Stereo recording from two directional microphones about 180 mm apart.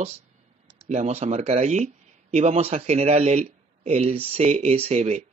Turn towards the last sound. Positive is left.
turn(degrees=-35)  # may be behind; listen again after turning